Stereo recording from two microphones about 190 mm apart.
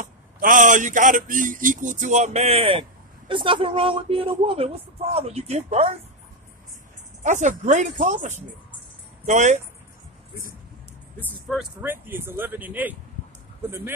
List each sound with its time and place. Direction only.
0.0 s a man's voice: 45° right (ahead or behind)
7.2 s a man's voice: 40° right (ahead or behind)
11.1 s speech: 10° left (ahead or behind)
11.5 s speech: 10° right (ahead or behind)